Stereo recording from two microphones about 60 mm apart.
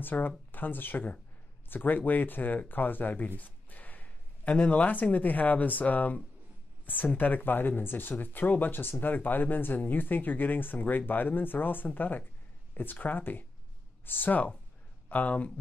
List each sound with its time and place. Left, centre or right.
0.0 s speech: left